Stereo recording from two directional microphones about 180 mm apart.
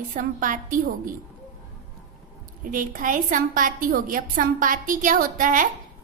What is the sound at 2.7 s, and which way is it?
A woman's voice, 50° right (ahead or behind).